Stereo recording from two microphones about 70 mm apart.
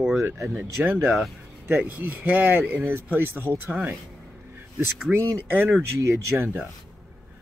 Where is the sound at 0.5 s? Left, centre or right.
Right.